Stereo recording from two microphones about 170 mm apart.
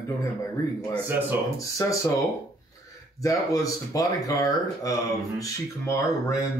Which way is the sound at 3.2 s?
20° left (ahead or behind).